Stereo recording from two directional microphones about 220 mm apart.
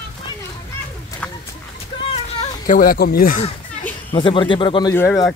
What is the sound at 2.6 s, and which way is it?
Speech, 40° left (ahead or behind).